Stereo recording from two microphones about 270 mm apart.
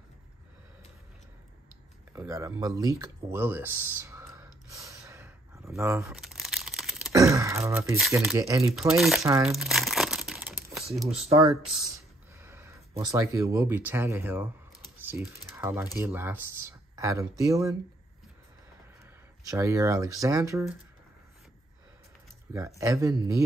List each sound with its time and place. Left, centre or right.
2.1 s a sound: centre
9.2 s speech: centre
9.5 s crumpling: centre
11.1 s speech: right
12.4 s a sound: centre
12.9 s speech: centre
19.5 s speech: centre
22.8 s speech: centre